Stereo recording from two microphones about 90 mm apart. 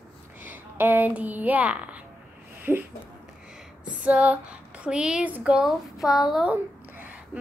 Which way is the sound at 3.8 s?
15° right (ahead or behind).